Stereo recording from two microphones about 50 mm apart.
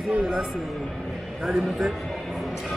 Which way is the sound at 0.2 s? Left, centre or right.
Centre.